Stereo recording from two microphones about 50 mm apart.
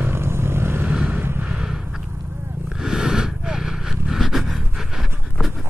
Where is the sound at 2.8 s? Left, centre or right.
Centre.